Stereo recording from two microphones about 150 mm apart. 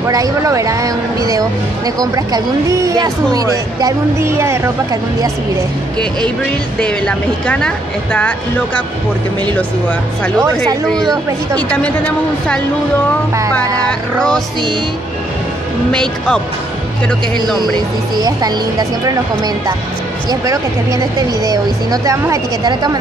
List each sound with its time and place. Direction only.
0.0 s speech: 20° right (ahead or behind)
6.8 s speech: 5° left (ahead or behind)
10.9 s speech: 5° left (ahead or behind)
13.8 s speech: 5° left (ahead or behind)
15.9 s speech: 5° left (ahead or behind)
18.1 s speech: 25° right (ahead or behind)